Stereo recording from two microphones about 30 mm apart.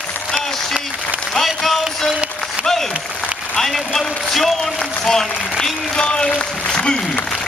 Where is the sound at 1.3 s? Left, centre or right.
Centre.